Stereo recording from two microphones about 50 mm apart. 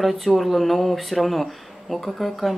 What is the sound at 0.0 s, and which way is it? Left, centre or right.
Speech, centre.